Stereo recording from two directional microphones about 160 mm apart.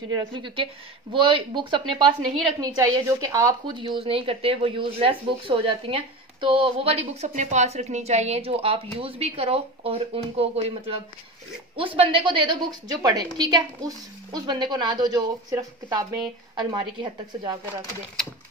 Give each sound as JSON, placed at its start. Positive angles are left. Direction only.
{"t": 0.3, "sound": "a woman's voice", "side_deg": -30}